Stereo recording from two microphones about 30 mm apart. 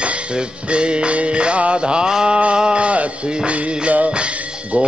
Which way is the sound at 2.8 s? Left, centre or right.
Right.